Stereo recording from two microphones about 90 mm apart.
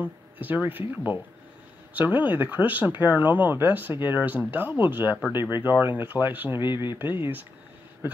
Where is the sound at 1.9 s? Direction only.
20° right (ahead or behind).